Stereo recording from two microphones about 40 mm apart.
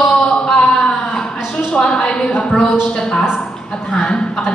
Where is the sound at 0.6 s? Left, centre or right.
Left.